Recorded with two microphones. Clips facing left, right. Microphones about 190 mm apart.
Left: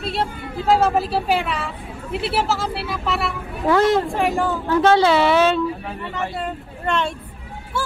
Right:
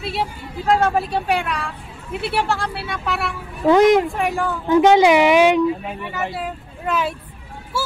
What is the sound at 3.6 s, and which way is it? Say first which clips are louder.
Speech: right 4 dB; 15° right (ahead or behind).